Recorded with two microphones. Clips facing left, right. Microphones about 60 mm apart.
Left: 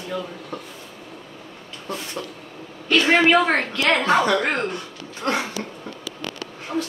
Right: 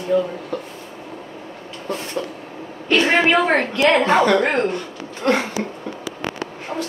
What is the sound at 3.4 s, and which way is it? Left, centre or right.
Speech, right.